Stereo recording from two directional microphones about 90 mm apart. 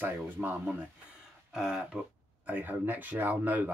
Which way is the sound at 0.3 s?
20° right (ahead or behind).